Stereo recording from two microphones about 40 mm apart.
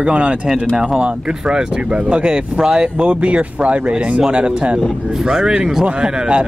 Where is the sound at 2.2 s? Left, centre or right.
Right.